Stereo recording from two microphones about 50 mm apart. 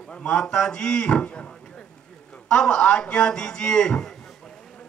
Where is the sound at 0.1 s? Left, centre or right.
Centre.